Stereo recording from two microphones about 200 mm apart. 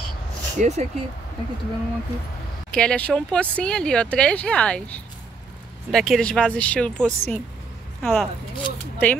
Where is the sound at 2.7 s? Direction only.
5° left (ahead or behind).